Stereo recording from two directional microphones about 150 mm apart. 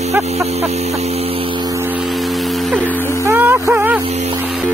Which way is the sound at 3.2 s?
15° right (ahead or behind).